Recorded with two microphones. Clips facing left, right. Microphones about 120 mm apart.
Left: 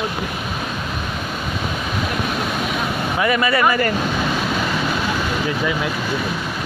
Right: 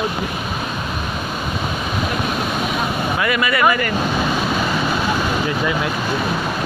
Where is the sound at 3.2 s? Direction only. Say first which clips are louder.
Left 1 dB; 30° left (ahead or behind).